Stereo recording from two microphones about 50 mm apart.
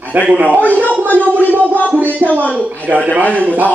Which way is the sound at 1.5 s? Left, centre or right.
Right.